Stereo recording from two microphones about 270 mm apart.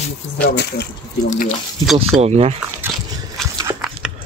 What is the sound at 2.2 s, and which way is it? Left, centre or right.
Speech, right.